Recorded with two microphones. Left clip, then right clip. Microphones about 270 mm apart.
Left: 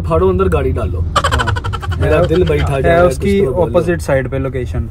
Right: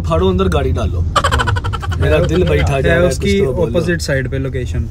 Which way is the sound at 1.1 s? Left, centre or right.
Centre.